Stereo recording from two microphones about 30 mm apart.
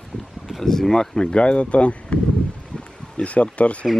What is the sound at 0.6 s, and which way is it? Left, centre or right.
Speech, centre.